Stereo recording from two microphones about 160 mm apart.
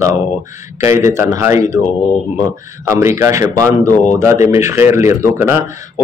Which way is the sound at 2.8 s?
20° right (ahead or behind).